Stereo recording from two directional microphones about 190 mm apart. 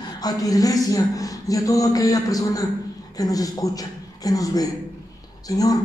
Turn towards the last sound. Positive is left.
turn(degrees=20)  # may be behind; listen again after turning